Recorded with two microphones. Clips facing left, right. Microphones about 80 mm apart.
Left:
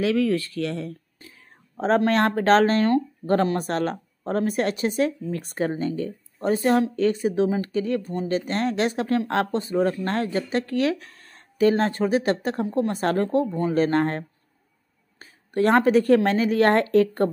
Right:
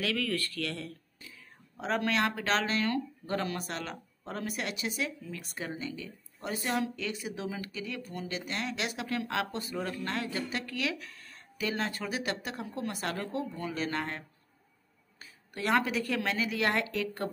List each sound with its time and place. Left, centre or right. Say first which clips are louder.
0.0 s speech: left 11 dB; left
1.8 s speech: left 10 dB; left